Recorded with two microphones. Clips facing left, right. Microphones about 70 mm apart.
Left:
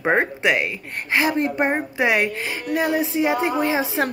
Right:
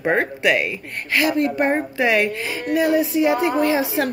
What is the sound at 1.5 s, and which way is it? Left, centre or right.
A woman's voice, centre.